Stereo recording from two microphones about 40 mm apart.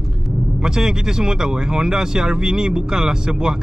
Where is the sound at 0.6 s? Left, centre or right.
Centre.